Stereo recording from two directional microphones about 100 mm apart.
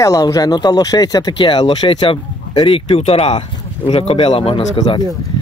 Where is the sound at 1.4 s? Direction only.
55° left (ahead or behind); by 3.4 s 90° left.